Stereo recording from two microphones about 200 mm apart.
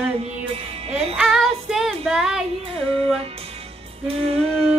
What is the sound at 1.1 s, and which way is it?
Music, centre (ahead or behind).